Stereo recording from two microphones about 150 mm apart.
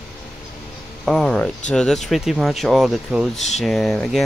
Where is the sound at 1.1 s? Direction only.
5° left (ahead or behind).